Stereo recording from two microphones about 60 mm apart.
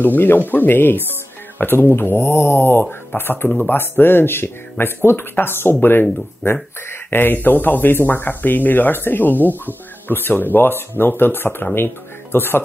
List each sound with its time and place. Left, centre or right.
0.0 s speech: left